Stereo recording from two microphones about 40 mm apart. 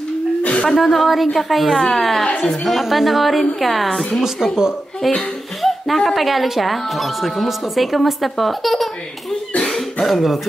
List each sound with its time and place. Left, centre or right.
0.4 s a sound: left
0.7 s speech: centre
2.3 s a woman's voice: centre
2.6 s speech: centre
5.0 s speech: centre
5.6 s a sound: centre
6.1 s speech: centre
9.7 s cough: centre